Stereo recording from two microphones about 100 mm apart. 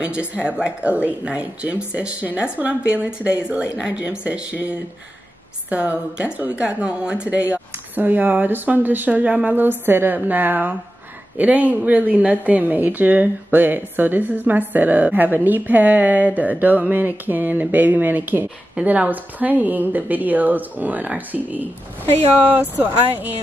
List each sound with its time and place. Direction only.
0.0 s a woman's voice: 10° right (ahead or behind)